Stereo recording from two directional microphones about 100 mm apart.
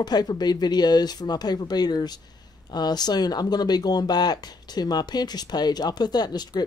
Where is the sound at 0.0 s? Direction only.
45° left (ahead or behind).